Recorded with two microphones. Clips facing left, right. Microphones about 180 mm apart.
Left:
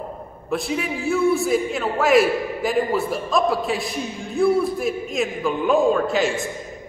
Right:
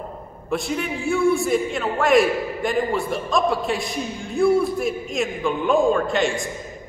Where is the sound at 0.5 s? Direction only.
Centre (ahead or behind).